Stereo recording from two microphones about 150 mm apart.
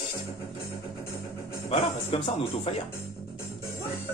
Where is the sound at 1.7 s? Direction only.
40° left (ahead or behind).